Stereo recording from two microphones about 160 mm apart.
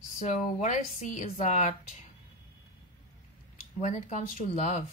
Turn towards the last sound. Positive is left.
turn(degrees=45)  # may be behind; listen again after turning